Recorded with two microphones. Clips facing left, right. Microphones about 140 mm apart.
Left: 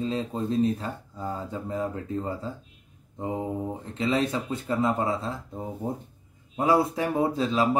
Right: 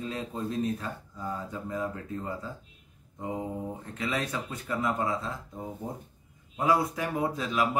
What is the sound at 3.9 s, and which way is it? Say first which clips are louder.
Speech: left 7 dB; 25° left (ahead or behind).